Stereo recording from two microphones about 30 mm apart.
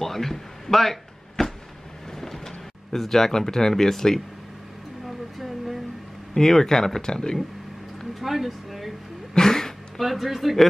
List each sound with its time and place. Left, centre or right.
0.0 s a man's voice: centre
1.4 s vehicle: centre
2.1 s a sound: centre
3.0 s speech: centre
6.3 s speech: centre
8.2 s speech: centre
9.3 s a sound: centre
9.9 s speech: centre